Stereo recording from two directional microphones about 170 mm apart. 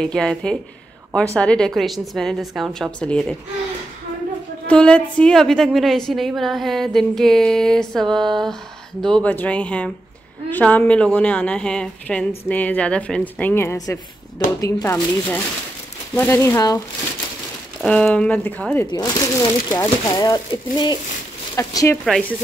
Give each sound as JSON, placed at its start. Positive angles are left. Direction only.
{"t": 0.0, "sound": "a woman's voice", "side_deg": 5}
{"t": 4.6, "sound": "a woman's voice", "side_deg": 5}
{"t": 17.8, "sound": "a woman's voice", "side_deg": 5}
{"t": 18.9, "sound": "a woman's voice", "side_deg": 25}